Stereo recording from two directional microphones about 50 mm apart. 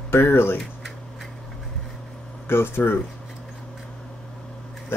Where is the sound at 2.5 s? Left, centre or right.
Left.